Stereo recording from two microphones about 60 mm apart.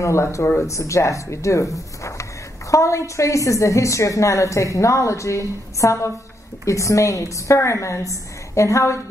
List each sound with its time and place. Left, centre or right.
0.0 s a woman's voice: left
2.7 s a woman's voice: left